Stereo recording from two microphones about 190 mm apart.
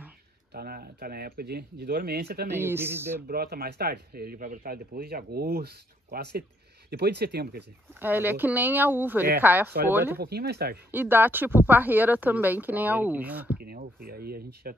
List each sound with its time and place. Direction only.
0.5 s speech: 55° right (ahead or behind)
2.5 s speech: 10° right (ahead or behind)
3.3 s speech: 55° right (ahead or behind)
8.0 s speech: 10° right (ahead or behind)
10.1 s speech: 55° right (ahead or behind)
10.9 s speech: 10° right (ahead or behind)
13.6 s speech: 50° right (ahead or behind)